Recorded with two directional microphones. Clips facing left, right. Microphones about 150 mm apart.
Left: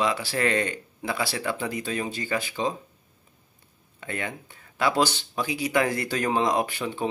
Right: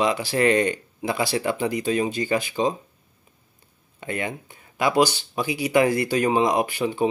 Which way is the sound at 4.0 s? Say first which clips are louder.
Right 4 dB; 15° right (ahead or behind).